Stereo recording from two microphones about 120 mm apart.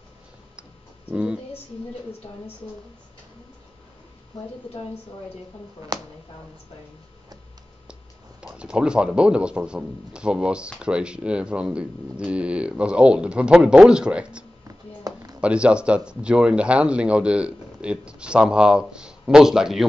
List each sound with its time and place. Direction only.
1.1 s speech: 10° right (ahead or behind)
5.9 s speech: 35° right (ahead or behind)
8.4 s speech: 10° right (ahead or behind)
15.1 s a sound: 35° right (ahead or behind)
15.4 s speech: 10° right (ahead or behind)